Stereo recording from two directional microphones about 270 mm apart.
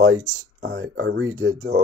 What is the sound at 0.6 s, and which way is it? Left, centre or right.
Speech, right.